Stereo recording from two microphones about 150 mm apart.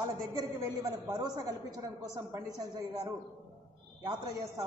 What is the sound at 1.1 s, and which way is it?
A woman's voice, 25° right (ahead or behind).